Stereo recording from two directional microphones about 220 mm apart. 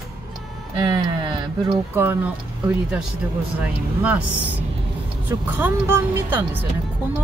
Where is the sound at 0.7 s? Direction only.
20° right (ahead or behind).